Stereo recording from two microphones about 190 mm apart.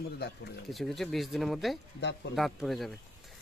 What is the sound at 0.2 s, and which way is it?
Speech, 60° left (ahead or behind).